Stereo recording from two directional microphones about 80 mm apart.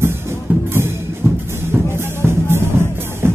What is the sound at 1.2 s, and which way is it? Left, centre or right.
Music, right.